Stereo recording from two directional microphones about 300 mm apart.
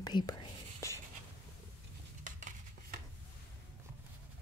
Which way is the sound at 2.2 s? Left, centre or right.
Right.